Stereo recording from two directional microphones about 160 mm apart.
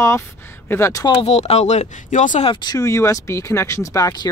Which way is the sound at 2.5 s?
25° left (ahead or behind).